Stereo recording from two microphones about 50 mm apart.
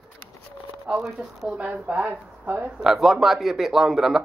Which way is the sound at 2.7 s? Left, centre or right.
Centre.